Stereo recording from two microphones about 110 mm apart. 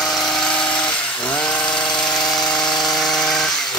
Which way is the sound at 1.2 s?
10° left (ahead or behind).